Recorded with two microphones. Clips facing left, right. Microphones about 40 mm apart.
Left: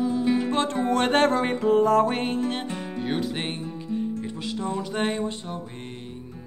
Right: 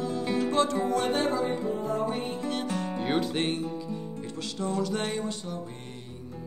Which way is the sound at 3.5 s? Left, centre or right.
Left.